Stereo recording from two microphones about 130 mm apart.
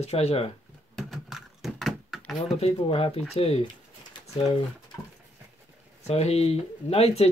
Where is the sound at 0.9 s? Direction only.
Centre (ahead or behind).